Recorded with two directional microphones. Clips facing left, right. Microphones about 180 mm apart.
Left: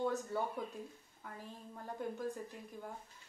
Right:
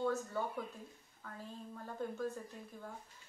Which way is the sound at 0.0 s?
15° left (ahead or behind).